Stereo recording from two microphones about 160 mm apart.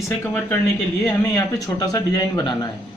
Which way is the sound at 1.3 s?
20° left (ahead or behind).